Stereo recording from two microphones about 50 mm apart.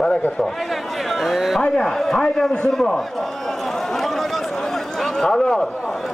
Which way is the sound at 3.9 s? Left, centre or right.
Centre.